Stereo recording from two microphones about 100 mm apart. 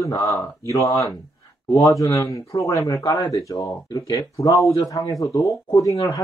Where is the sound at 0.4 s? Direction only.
35° left (ahead or behind).